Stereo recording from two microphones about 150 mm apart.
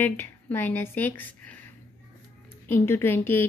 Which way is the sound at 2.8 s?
15° left (ahead or behind).